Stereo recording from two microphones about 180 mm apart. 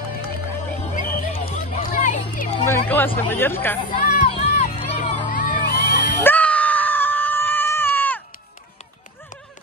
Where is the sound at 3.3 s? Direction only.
10° left (ahead or behind).